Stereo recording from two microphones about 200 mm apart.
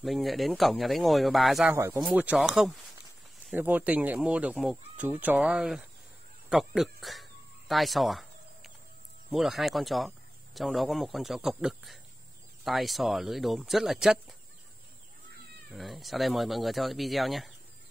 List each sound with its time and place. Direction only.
0.0 s speech: centre (ahead or behind)
6.5 s a sound: centre (ahead or behind)
9.3 s speech: centre (ahead or behind)
15.7 s speech: centre (ahead or behind)